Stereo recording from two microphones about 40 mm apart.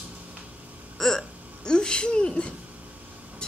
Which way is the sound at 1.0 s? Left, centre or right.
Centre.